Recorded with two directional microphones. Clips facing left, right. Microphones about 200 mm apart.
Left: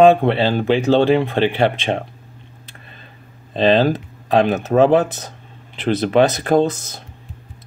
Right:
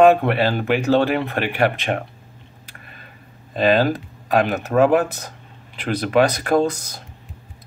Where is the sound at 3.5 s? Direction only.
25° left (ahead or behind).